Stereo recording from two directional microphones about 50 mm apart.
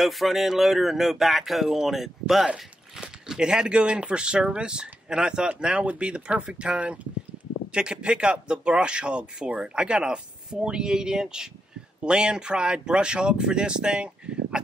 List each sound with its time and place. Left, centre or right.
0.0 s speech: centre
2.4 s speech: centre